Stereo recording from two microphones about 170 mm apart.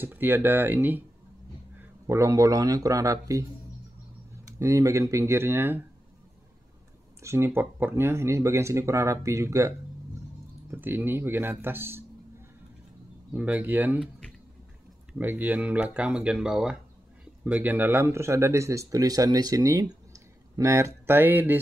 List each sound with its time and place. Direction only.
0.0 s speech: 10° right (ahead or behind)
4.6 s speech: 15° right (ahead or behind)
7.2 s speech: 15° right (ahead or behind)
13.3 s speech: 10° right (ahead or behind)
15.1 s speech: 10° right (ahead or behind)